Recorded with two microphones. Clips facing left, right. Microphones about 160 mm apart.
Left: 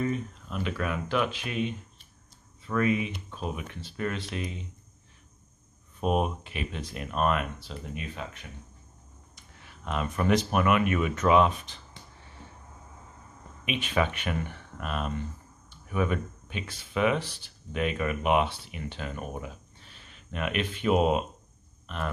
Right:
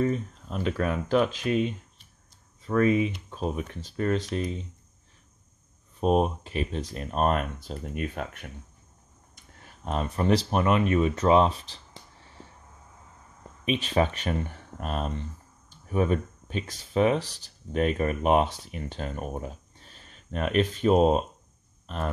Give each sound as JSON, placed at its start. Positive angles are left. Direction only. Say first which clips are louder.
{"t": 0.0, "sound": "speech", "louder": "right 3 dB", "side_deg": -35}
{"t": 5.9, "sound": "speech", "louder": "right 4 dB", "side_deg": -35}
{"t": 13.7, "sound": "speech", "louder": "right 3 dB", "side_deg": -35}